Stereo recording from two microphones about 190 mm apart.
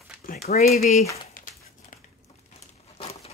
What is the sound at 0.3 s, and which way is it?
Speech, 50° left (ahead or behind).